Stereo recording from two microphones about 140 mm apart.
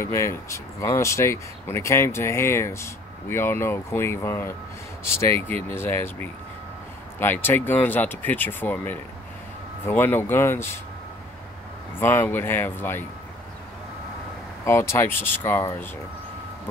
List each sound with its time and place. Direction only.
0.0 s speech: 20° left (ahead or behind)
12.0 s speech: 15° left (ahead or behind)
14.6 s speech: 20° left (ahead or behind)